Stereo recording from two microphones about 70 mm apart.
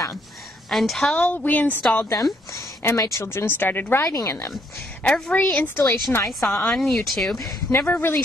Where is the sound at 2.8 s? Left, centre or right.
Left.